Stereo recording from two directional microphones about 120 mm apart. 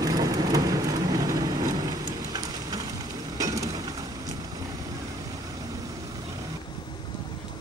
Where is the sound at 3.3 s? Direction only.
30° right (ahead or behind).